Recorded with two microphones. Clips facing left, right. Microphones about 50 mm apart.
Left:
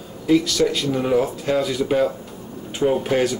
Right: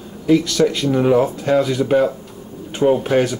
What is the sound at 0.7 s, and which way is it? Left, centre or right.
Speech, centre.